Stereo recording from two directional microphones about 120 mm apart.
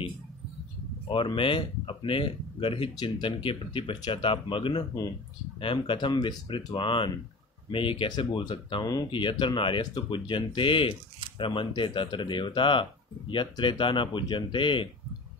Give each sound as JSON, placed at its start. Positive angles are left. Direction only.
{"t": 1.0, "sound": "speech", "side_deg": 45}